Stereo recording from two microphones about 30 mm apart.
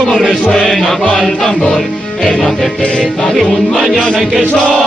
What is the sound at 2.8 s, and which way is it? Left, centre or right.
Music, left.